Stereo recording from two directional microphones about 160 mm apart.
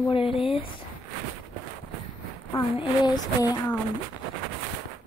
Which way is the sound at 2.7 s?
25° left (ahead or behind).